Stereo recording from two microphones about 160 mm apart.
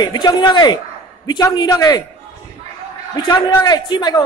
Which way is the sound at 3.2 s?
20° left (ahead or behind).